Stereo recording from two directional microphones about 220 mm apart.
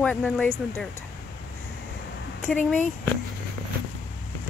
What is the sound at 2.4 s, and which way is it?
Speech, 5° left (ahead or behind).